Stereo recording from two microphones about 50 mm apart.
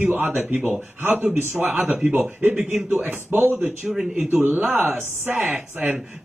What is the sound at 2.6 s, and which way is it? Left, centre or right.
Speech, centre.